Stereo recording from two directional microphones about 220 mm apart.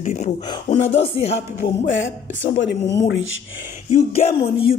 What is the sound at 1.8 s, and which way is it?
Speech, 60° left (ahead or behind).